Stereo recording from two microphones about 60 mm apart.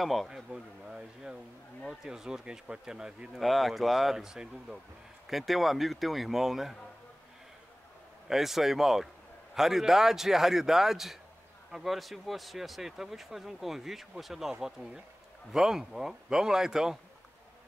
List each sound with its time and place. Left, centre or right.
0.0 s speech: centre
0.3 s a man's voice: centre
3.3 s speech: centre
8.3 s a man's voice: centre